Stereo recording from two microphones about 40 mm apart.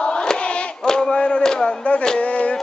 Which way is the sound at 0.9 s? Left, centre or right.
Centre.